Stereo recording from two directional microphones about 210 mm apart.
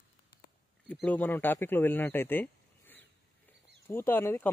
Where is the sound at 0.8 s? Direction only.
5° left (ahead or behind).